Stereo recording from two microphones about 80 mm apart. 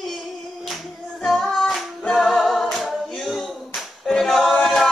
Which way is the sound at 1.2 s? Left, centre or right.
Centre.